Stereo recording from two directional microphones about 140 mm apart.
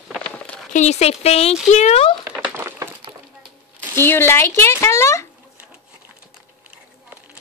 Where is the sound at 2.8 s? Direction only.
25° right (ahead or behind).